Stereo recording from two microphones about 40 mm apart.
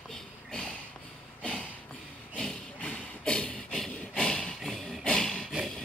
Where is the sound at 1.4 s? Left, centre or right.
Left.